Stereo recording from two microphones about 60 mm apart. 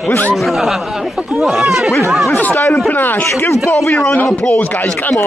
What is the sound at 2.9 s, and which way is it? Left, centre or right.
Speech, left.